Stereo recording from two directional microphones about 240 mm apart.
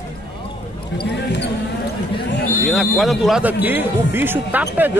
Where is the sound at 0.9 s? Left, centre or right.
Left.